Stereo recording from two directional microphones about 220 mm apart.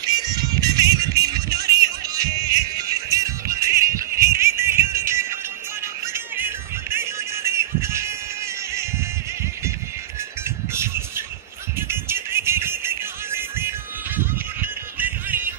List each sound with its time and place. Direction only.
0.0 s music: 15° right (ahead or behind)
7.4 s a sound: 10° right (ahead or behind)
10.7 s bird: 10° right (ahead or behind)
11.9 s music: 10° right (ahead or behind)